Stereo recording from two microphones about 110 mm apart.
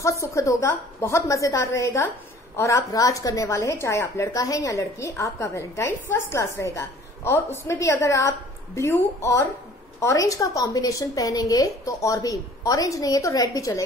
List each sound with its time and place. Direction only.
0.2 s a woman's voice: 30° left (ahead or behind)